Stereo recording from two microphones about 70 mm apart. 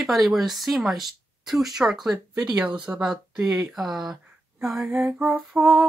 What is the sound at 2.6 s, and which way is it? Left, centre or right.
Humming, centre.